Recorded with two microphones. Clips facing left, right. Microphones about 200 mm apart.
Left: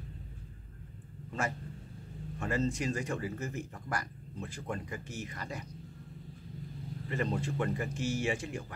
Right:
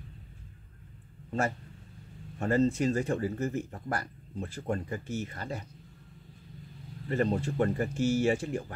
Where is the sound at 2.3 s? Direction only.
35° right (ahead or behind).